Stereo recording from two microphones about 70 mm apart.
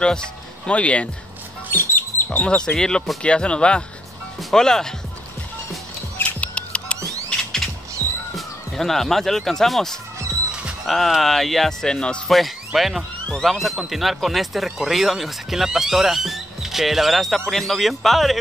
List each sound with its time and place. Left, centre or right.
0.7 s speech: centre
1.7 s music: left
2.4 s speech: centre
6.2 s music: centre
8.4 s speech: centre
12.3 s speech: centre